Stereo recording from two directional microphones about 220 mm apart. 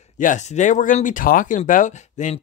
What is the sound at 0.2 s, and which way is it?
Speech, 35° left (ahead or behind).